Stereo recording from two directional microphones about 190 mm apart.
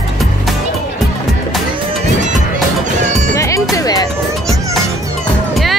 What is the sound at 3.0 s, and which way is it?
Music, 40° right (ahead or behind).